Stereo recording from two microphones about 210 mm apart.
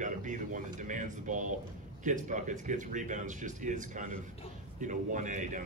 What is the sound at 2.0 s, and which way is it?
A man's voice, 35° right (ahead or behind).